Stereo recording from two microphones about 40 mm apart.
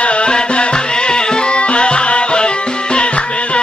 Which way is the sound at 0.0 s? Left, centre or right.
Left.